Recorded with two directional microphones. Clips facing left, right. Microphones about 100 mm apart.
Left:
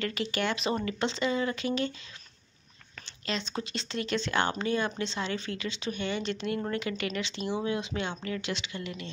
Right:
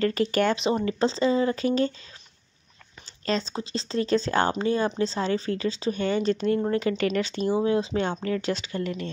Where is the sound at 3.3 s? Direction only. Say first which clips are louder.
Right 6 dB; 35° right (ahead or behind).